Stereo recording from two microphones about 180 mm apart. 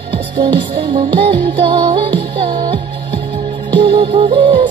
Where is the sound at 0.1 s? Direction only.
30° right (ahead or behind).